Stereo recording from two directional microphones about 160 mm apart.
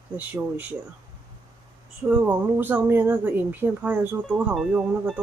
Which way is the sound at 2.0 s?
10° right (ahead or behind).